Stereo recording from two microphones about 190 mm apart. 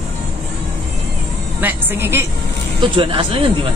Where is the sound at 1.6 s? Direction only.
10° right (ahead or behind).